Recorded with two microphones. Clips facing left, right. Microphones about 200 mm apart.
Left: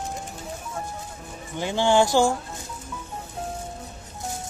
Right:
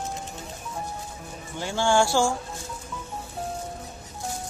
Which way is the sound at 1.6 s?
20° left (ahead or behind).